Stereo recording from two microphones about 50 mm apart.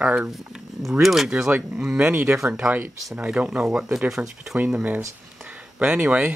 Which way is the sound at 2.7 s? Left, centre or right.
Right.